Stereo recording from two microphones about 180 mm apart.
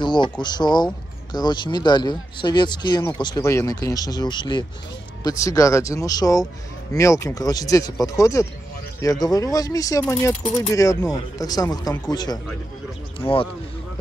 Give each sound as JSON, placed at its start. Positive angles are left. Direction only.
{"t": 0.0, "sound": "speech", "side_deg": 25}